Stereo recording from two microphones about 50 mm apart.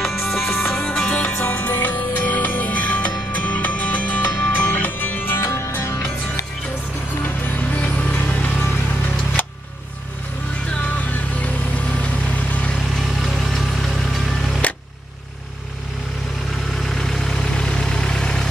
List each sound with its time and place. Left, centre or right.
0.0 s music: centre
0.5 s music: centre
1.0 s music: left
5.4 s music: left
7.7 s music: left
9.4 s vehicle: left
11.4 s vehicle: left
13.2 s music: centre
16.9 s vehicle: centre